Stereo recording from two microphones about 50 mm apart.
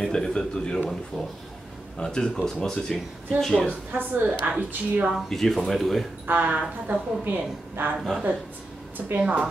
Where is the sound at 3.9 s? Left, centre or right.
Right.